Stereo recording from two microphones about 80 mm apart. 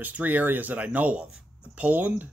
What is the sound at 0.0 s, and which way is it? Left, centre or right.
Speech, right.